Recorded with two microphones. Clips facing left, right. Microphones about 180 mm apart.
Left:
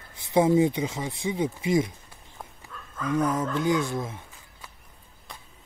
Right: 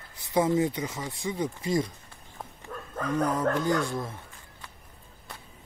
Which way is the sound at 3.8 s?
20° left (ahead or behind).